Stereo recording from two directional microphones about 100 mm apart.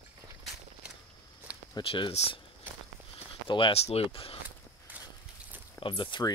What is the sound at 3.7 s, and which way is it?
Speech, 90° left.